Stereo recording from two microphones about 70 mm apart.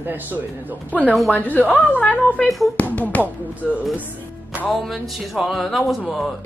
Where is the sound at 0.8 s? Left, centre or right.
Left.